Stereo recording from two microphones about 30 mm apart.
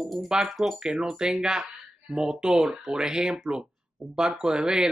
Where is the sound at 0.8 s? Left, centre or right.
Centre.